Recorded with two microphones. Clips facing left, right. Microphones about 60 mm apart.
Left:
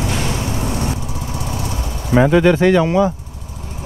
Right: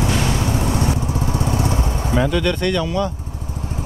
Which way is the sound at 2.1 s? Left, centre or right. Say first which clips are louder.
Left 8 dB; left.